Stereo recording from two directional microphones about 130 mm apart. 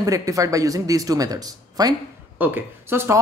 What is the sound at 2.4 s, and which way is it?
Speech, 20° right (ahead or behind).